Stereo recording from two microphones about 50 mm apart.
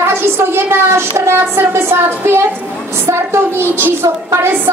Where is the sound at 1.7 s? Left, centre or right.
Right.